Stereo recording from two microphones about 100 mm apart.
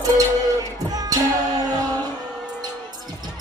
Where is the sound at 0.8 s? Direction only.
40° right (ahead or behind).